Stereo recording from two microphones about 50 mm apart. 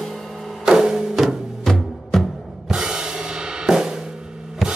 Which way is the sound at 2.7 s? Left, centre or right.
Centre.